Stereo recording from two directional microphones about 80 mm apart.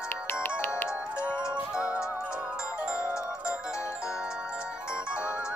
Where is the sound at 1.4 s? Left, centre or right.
Centre.